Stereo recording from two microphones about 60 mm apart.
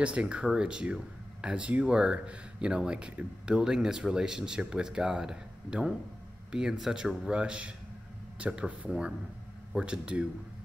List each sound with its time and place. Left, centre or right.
0.0 s speech: centre